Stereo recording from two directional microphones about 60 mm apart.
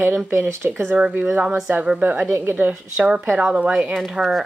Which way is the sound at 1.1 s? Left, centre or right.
Right.